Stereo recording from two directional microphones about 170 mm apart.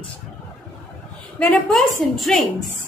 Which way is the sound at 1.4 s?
Centre (ahead or behind).